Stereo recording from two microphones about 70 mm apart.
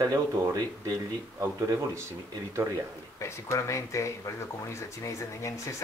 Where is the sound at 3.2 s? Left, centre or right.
Left.